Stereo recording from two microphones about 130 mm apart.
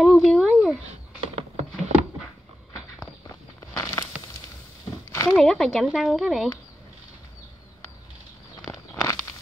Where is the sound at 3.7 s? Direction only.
30° left (ahead or behind).